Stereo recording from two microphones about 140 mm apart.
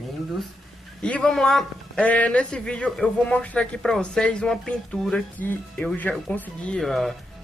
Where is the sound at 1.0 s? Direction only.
5° left (ahead or behind).